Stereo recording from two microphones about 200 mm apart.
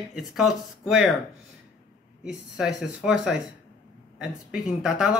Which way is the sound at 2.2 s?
5° right (ahead or behind).